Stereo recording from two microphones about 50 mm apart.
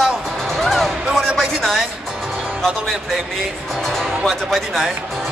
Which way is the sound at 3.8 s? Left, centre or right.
Centre.